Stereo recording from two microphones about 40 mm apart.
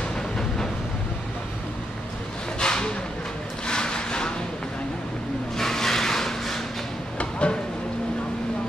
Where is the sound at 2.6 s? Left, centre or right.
Left.